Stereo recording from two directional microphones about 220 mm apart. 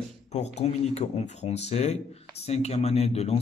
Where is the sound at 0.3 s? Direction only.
30° left (ahead or behind).